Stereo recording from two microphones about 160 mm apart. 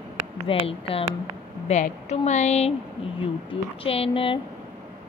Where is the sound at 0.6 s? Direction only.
35° left (ahead or behind).